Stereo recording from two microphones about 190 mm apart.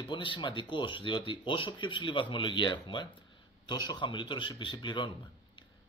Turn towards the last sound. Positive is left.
turn(degrees=25)  # may be behind; listen again after turning